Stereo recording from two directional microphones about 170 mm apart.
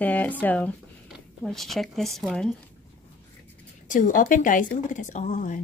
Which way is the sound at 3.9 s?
50° left (ahead or behind).